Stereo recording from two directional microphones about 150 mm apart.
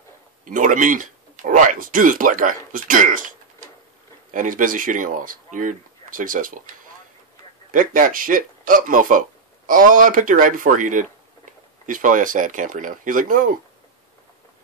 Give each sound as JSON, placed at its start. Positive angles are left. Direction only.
{"t": 0.5, "sound": "speech", "side_deg": -60}
{"t": 7.7, "sound": "speech", "side_deg": -65}